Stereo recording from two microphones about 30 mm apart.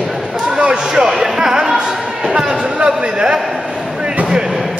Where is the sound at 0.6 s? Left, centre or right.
Right.